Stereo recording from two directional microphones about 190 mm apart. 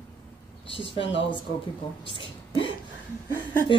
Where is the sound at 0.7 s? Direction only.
25° left (ahead or behind).